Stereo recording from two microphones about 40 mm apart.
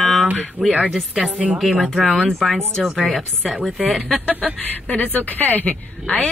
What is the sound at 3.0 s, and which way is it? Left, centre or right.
Speech, centre.